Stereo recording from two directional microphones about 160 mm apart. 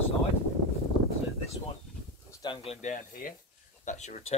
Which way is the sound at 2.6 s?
50° left (ahead or behind).